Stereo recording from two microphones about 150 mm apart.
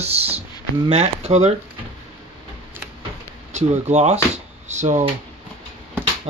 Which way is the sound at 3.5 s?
50° right (ahead or behind).